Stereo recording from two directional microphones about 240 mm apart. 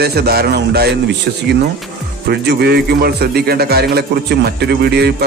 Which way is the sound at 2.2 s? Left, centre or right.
Right.